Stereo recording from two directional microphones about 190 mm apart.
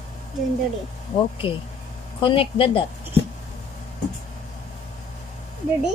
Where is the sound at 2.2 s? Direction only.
30° left (ahead or behind).